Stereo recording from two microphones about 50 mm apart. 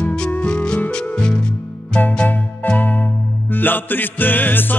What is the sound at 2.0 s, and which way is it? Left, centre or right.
Music, left.